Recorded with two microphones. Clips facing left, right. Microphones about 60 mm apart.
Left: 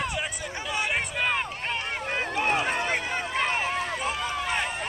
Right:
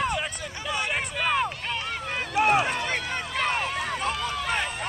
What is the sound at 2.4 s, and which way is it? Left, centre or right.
Run, centre.